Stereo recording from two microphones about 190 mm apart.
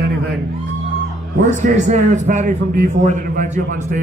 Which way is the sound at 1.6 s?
40° right (ahead or behind).